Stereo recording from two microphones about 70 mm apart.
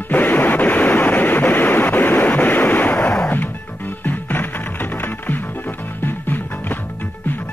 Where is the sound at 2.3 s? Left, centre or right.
Left.